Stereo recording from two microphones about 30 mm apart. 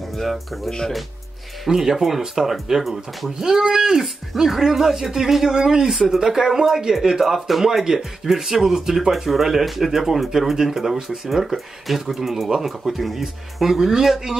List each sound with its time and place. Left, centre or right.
0.1 s speech: centre
0.7 s speech: centre
1.8 s speech: centre
3.3 s speech: centre